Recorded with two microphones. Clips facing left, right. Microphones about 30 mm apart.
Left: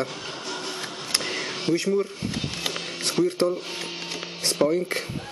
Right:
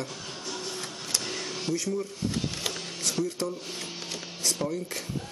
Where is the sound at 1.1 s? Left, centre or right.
Left.